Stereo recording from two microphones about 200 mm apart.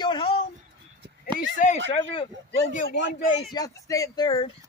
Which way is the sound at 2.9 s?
65° left (ahead or behind).